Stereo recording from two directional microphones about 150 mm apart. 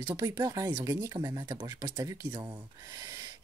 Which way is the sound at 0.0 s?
25° right (ahead or behind).